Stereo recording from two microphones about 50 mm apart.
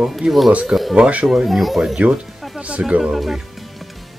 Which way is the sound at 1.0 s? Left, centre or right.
Right.